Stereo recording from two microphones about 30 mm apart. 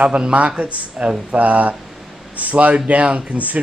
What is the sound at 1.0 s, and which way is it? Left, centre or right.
Speech, centre.